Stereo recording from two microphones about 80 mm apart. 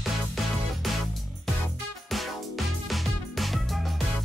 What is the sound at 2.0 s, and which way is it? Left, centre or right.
Music, centre.